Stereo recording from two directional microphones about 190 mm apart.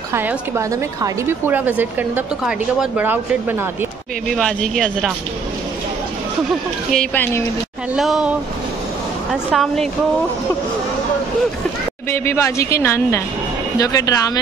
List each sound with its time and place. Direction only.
0.1 s a woman's voice: 10° right (ahead or behind)
6.9 s a woman's voice: 5° left (ahead or behind)
12.1 s a woman's voice: 15° left (ahead or behind)